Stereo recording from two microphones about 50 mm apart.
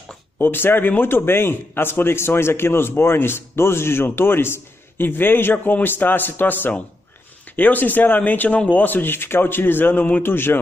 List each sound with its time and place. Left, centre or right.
0.4 s speech: left
10.2 s speech: left